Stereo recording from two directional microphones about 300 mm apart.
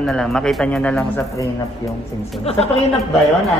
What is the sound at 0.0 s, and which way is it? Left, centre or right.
A woman's voice, centre.